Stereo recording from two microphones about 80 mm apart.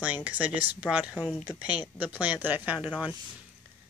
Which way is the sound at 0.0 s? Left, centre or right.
Centre.